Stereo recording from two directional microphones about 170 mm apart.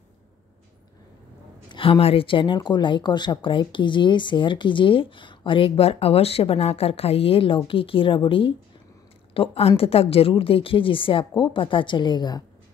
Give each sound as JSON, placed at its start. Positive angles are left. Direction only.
{"t": 1.7, "sound": "a woman's voice", "side_deg": 30}